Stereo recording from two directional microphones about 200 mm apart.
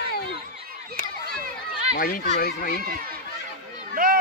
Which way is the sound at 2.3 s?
50° left (ahead or behind).